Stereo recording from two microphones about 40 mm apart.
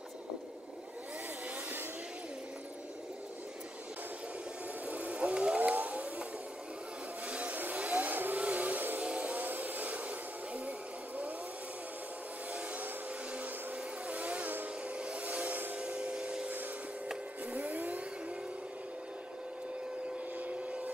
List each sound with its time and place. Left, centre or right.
4.8 s vehicle: right
5.6 s vehicle: right
7.2 s a sound: right
7.8 s vehicle: right
9.0 s vehicle: right
9.5 s a sound: right
14.0 s a sound: right
15.0 s train: right
17.5 s vacuum cleaner: right
20.3 s train: right